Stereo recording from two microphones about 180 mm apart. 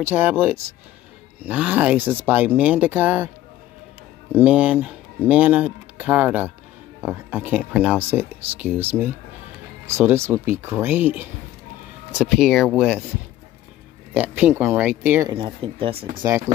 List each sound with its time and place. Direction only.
0.0 s speech: 10° right (ahead or behind)
4.3 s speech: 10° right (ahead or behind)
14.1 s speech: 10° right (ahead or behind)
15.3 s speech: 30° right (ahead or behind)
16.2 s speech: 15° right (ahead or behind)